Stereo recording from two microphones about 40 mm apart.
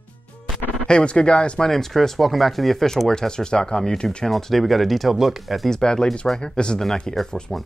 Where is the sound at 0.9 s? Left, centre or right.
Left.